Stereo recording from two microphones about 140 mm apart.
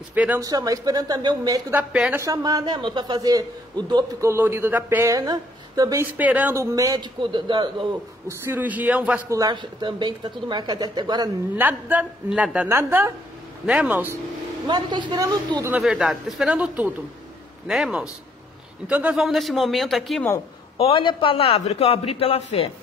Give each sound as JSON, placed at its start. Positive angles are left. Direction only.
{"t": 0.1, "sound": "a man's voice", "side_deg": -10}
{"t": 0.4, "sound": "a man's voice", "side_deg": -25}
{"t": 1.7, "sound": "a man's voice", "side_deg": -15}
{"t": 2.1, "sound": "a man's voice", "side_deg": -25}
{"t": 4.3, "sound": "a man's voice", "side_deg": -20}
{"t": 6.1, "sound": "a man's voice", "side_deg": -10}
{"t": 8.3, "sound": "a man's voice", "side_deg": -15}
{"t": 9.3, "sound": "speech", "side_deg": -30}
{"t": 11.5, "sound": "a man's voice", "side_deg": -10}
{"t": 12.6, "sound": "a man's voice", "side_deg": -20}
{"t": 14.7, "sound": "speech", "side_deg": -35}
{"t": 15.7, "sound": "a man's voice", "side_deg": -5}
{"t": 20.7, "sound": "a man's voice", "side_deg": 40}